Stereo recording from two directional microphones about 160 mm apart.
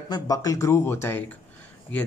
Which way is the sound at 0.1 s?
20° left (ahead or behind).